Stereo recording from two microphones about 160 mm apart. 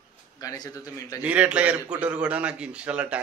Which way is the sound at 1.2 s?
10° right (ahead or behind).